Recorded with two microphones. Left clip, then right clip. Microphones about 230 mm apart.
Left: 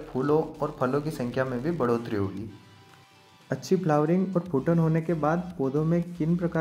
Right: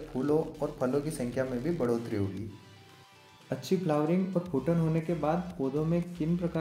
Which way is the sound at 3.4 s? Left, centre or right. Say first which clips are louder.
Left 5 dB; left.